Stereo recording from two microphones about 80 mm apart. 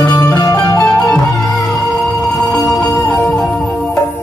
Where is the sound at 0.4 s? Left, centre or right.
Left.